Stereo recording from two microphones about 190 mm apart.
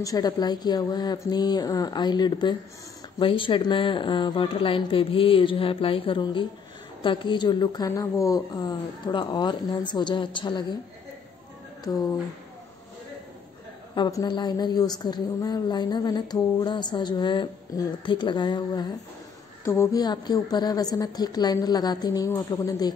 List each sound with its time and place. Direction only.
0.0 s a woman's voice: 20° left (ahead or behind)
11.8 s speech: 20° left (ahead or behind)
13.9 s a woman's voice: 20° left (ahead or behind)